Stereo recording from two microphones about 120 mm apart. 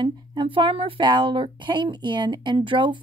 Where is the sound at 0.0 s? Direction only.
40° right (ahead or behind).